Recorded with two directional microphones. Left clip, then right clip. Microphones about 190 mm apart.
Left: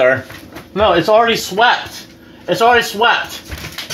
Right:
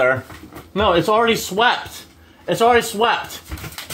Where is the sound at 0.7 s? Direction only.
15° right (ahead or behind).